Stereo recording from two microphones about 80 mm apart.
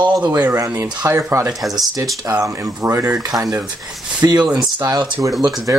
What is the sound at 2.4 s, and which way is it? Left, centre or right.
Speech, right.